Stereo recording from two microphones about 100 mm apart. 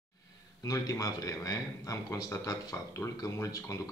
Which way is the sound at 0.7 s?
35° left (ahead or behind).